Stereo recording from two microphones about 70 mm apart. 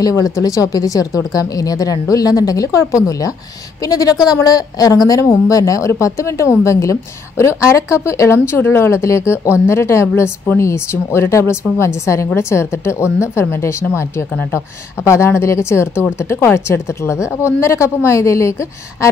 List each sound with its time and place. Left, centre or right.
0.1 s a woman's voice: left
15.0 s a woman's voice: left